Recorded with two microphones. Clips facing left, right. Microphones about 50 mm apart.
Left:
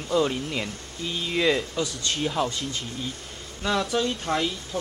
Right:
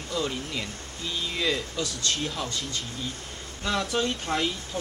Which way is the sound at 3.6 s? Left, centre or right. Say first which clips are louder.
Left 2 dB; centre.